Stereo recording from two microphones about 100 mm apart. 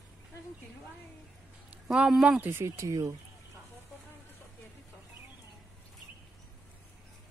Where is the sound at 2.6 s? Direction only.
30° right (ahead or behind).